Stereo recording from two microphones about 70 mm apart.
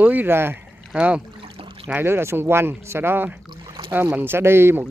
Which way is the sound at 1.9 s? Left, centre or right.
Right.